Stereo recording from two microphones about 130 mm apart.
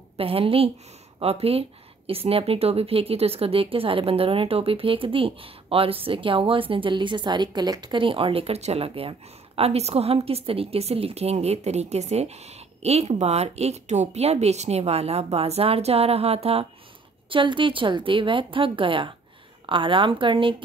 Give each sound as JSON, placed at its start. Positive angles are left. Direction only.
{"t": 0.2, "sound": "speech", "side_deg": -45}